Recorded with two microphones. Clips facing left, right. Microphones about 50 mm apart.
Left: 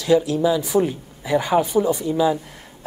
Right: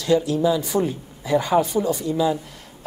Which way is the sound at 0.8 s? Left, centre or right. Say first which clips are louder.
Left 1 dB; centre.